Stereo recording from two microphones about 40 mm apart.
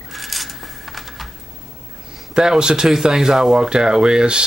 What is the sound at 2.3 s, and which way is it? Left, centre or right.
Speech, centre.